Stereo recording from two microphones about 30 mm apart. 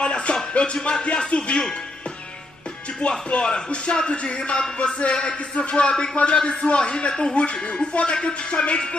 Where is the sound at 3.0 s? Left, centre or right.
Left.